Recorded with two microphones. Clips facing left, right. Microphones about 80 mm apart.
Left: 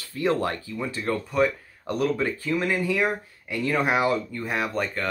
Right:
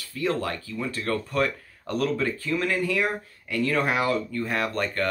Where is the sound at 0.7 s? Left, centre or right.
Centre.